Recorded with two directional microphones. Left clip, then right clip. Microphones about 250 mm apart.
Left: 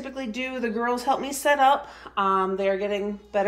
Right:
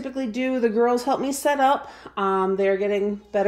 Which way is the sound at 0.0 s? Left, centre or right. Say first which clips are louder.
Right 4 dB; right.